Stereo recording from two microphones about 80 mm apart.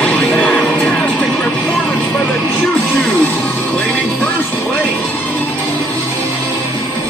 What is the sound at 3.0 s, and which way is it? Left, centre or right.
Music, centre.